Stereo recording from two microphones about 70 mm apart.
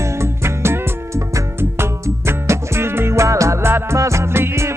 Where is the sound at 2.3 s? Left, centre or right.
Right.